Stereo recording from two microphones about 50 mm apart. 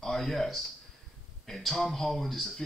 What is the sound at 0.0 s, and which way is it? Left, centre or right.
Speech, centre.